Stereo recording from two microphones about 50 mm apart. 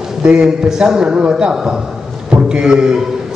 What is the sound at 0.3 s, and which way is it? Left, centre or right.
A man's voice, centre.